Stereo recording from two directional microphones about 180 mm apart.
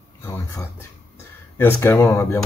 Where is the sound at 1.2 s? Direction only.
15° left (ahead or behind).